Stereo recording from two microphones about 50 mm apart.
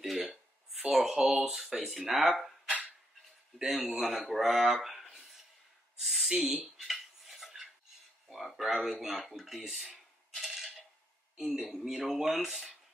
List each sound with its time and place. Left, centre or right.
0.0 s a sound: centre
0.8 s speech: centre
3.5 s speech: centre
5.1 s a sound: centre
6.4 s speech: right
6.8 s cutlery: centre
8.3 s speech: centre
10.4 s coin: centre
11.3 s speech: centre